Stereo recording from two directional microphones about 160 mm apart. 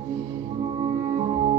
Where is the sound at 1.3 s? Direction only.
40° right (ahead or behind).